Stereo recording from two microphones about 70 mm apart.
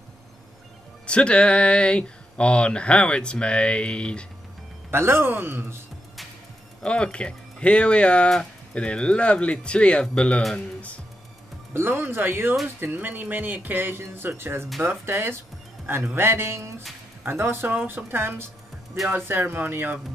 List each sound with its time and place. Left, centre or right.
1.0 s speech: centre
4.9 s speech: right
6.8 s speech: centre
11.7 s speech: right